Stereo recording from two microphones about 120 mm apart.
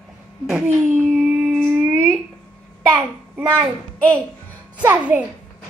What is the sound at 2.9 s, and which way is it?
Speech, 15° right (ahead or behind).